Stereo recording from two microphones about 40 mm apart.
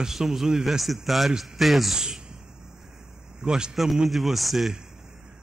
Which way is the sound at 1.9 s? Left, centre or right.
Centre.